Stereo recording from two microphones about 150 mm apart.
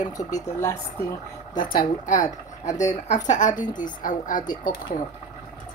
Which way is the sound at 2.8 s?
55° left (ahead or behind).